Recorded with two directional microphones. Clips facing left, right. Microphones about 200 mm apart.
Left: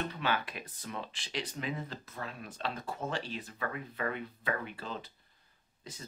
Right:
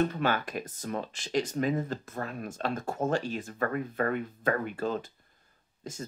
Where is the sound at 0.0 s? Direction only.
45° right (ahead or behind).